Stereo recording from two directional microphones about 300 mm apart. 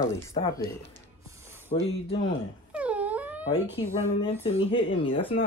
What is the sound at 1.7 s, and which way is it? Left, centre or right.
Speech, left.